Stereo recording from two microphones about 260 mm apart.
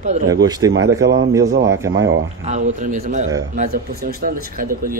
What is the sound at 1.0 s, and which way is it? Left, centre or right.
Speech, right.